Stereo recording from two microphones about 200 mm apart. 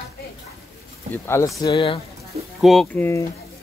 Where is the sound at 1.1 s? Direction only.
10° left (ahead or behind).